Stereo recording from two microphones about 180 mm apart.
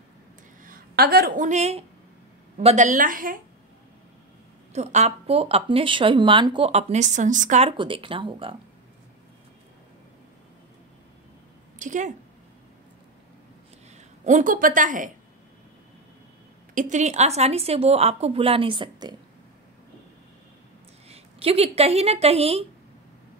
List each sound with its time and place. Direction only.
0.7 s a woman's voice: 55° right (ahead or behind)
4.7 s speech: 40° right (ahead or behind)
11.8 s speech: 45° right (ahead or behind)
14.2 s a woman's voice: 45° right (ahead or behind)
16.7 s speech: 40° right (ahead or behind); by 19.1 s 25° right (ahead or behind)
21.1 s speech: 35° right (ahead or behind)